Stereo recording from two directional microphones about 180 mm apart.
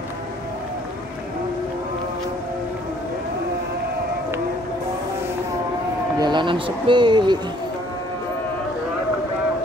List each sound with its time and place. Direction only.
6.1 s speech: 25° right (ahead or behind)